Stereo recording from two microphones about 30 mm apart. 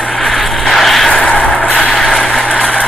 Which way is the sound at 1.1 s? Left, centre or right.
Left.